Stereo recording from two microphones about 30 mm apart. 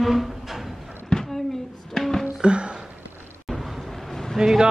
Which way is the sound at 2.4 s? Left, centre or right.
Right.